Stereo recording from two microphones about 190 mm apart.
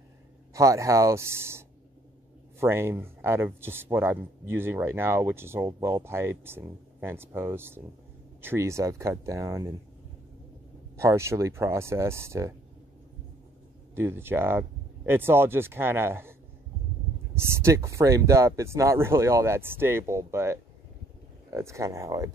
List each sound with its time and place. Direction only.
0.5 s speech: 15° right (ahead or behind)
2.6 s speech: 15° right (ahead or behind)
11.0 s speech: 15° right (ahead or behind)
13.9 s speech: 10° right (ahead or behind)